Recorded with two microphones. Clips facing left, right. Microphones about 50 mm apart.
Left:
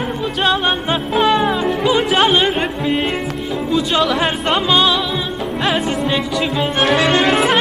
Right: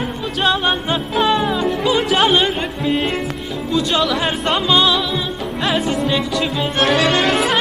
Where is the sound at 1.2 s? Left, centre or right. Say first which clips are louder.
Left 2 dB; centre.